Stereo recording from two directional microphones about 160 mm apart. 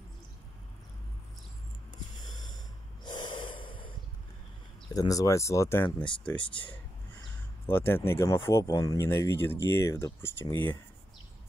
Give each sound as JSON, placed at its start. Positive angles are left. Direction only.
{"t": 2.3, "sound": "snort", "side_deg": 25}
{"t": 4.9, "sound": "speech", "side_deg": 20}
{"t": 6.4, "sound": "speech", "side_deg": 30}
{"t": 7.7, "sound": "speech", "side_deg": 15}